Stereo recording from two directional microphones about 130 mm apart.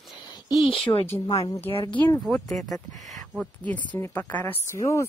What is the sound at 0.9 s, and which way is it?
Speech, 25° left (ahead or behind).